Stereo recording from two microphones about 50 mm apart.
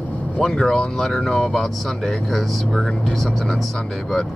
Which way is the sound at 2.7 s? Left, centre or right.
Centre.